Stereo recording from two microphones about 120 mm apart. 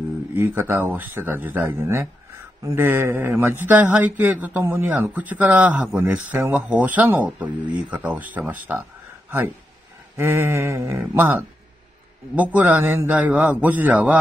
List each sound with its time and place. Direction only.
0.3 s a man's voice: 15° right (ahead or behind)
10.1 s a man's voice: 20° right (ahead or behind)